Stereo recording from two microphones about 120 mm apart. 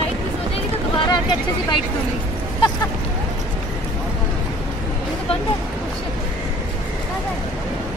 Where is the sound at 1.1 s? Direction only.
40° left (ahead or behind).